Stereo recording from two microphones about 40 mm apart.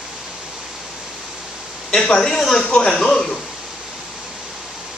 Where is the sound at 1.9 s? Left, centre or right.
Centre.